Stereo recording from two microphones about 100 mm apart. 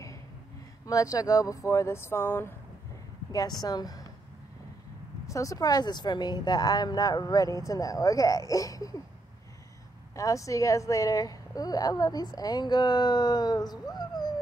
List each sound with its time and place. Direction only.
0.8 s a woman's voice: 35° left (ahead or behind)
3.3 s a woman's voice: 40° left (ahead or behind)
5.2 s a woman's voice: 35° left (ahead or behind)
10.1 s a woman's voice: 35° left (ahead or behind)